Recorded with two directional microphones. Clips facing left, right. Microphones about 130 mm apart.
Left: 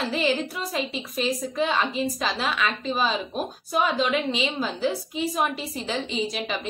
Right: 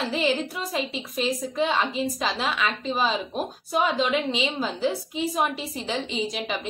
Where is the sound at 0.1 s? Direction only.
20° right (ahead or behind).